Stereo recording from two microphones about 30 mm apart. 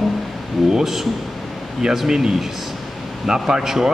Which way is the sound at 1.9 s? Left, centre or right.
Centre.